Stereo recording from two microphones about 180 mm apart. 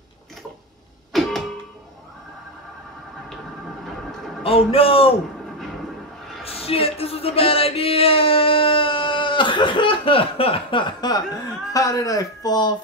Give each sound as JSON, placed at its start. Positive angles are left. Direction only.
{"t": 1.1, "sound": "music", "side_deg": 0}
{"t": 4.4, "sound": "a man's voice", "side_deg": 30}
{"t": 6.4, "sound": "a sound", "side_deg": 30}
{"t": 11.7, "sound": "speech", "side_deg": 20}